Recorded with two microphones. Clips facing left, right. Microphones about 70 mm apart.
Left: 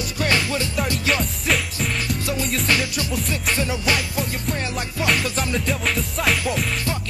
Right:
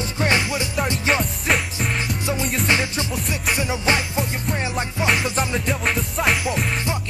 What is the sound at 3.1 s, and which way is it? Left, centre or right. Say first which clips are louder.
Music: left 2 dB; centre.